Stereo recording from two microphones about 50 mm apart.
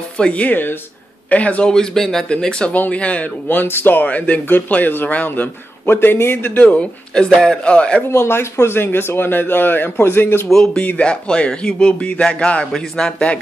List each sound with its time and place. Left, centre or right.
0.3 s a man's voice: left
1.7 s a man's voice: centre
2.2 s speech: centre
3.4 s a man's voice: left
6.6 s speech: left
8.1 s speech: left
10.5 s a man's voice: centre
10.8 s a man's voice: left